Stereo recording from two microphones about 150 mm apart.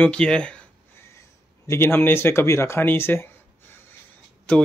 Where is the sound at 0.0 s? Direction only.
5° left (ahead or behind).